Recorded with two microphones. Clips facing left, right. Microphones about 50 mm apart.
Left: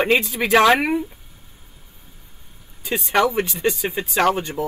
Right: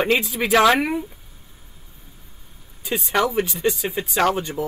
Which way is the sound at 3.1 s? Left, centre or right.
Centre.